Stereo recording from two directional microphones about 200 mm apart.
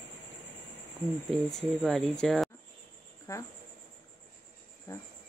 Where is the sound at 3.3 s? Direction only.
15° left (ahead or behind).